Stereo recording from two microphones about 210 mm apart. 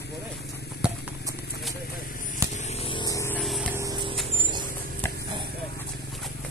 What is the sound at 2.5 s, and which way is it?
Vehicle, 30° left (ahead or behind).